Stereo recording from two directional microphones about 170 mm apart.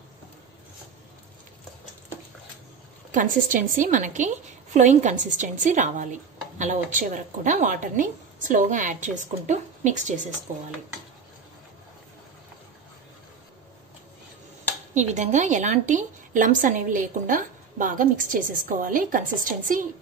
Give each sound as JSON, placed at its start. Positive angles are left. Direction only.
{"t": 3.1, "sound": "a woman's voice", "side_deg": -50}
{"t": 15.0, "sound": "a woman's voice", "side_deg": -45}